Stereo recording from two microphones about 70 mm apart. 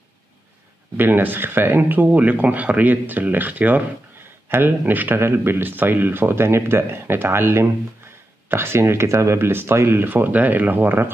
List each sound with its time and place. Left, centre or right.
0.9 s speech: right